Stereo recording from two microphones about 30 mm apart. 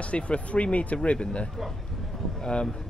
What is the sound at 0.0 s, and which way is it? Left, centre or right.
Speech, left.